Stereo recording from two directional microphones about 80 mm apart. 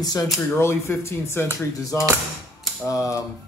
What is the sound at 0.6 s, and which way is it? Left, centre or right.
Speech, left.